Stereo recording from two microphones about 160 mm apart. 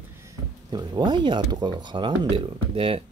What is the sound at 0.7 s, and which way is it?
Speech, 30° right (ahead or behind).